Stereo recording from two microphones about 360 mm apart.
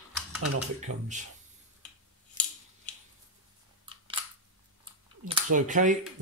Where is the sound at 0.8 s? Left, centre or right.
Centre.